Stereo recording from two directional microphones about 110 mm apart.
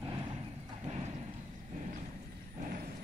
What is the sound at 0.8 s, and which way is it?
Horse, 90° right.